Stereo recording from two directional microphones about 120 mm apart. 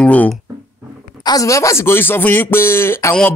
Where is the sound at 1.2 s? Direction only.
30° left (ahead or behind).